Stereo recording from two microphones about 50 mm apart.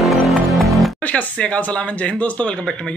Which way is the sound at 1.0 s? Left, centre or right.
Left.